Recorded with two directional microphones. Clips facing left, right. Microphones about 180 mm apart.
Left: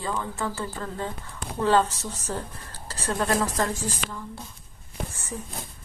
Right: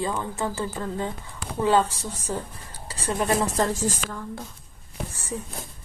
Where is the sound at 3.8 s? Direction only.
45° right (ahead or behind).